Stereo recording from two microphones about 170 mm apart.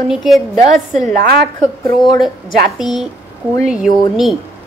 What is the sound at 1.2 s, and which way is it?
Speech, 65° right (ahead or behind).